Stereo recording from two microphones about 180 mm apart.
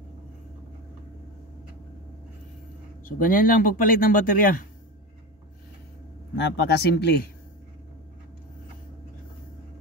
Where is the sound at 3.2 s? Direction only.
50° left (ahead or behind).